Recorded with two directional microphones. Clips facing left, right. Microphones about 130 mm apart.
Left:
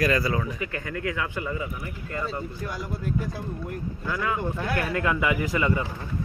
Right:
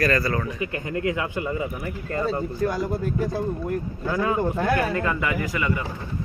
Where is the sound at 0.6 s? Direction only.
20° right (ahead or behind).